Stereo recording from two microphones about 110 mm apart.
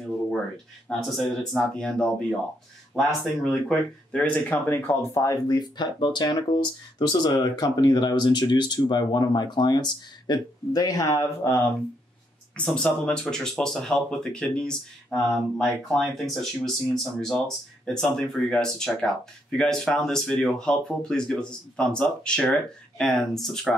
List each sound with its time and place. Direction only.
0.8 s speech: centre (ahead or behind); by 11.2 s 30° left (ahead or behind)
12.5 s speech: 10° left (ahead or behind)